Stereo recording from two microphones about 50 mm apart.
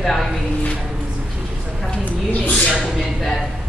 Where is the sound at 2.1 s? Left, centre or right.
Left.